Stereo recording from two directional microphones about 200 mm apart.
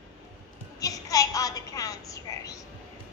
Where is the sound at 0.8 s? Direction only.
15° left (ahead or behind).